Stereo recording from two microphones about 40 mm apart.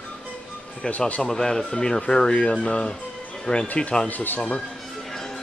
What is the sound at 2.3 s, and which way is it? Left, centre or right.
Speech, left.